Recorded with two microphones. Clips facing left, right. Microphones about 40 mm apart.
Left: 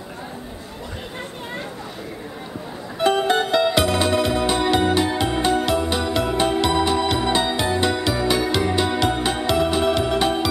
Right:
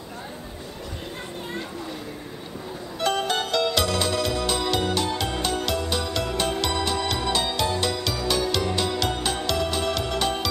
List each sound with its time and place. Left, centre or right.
3.0 s music: left